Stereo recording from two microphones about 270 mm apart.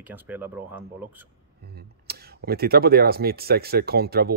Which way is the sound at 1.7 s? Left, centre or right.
Right.